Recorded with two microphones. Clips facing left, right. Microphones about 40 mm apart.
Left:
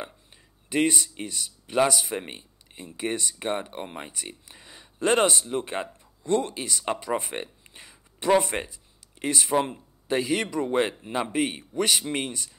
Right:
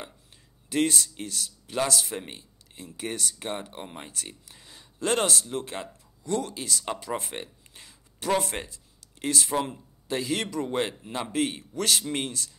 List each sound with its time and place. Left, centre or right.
0.7 s speech: centre